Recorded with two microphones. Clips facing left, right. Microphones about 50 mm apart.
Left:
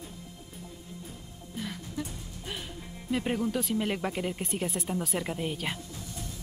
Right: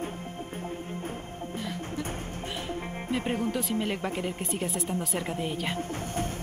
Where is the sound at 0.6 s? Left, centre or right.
Right.